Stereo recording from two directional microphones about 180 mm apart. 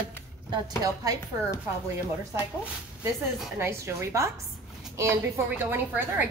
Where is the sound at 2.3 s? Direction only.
10° right (ahead or behind).